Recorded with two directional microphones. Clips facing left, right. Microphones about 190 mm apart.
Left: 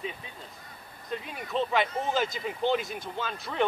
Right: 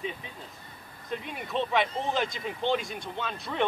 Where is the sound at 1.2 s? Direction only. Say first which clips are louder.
Left 1 dB; centre (ahead or behind).